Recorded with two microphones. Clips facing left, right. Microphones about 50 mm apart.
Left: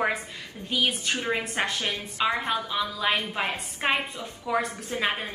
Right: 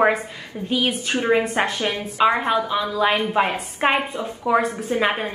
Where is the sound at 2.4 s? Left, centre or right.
Centre.